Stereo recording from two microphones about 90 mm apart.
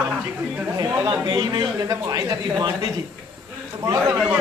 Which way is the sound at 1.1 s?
45° right (ahead or behind).